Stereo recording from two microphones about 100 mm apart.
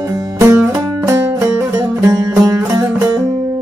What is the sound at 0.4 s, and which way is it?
Music, 25° right (ahead or behind).